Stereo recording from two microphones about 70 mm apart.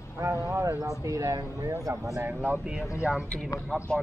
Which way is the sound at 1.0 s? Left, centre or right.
Right.